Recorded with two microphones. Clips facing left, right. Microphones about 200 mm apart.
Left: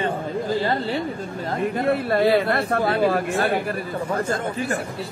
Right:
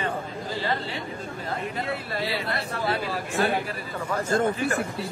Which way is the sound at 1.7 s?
55° left (ahead or behind).